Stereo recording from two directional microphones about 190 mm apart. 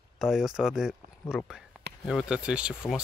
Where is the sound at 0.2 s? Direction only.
Centre (ahead or behind).